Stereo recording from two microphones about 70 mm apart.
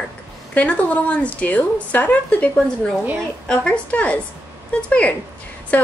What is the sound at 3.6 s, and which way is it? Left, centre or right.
A woman's voice, centre.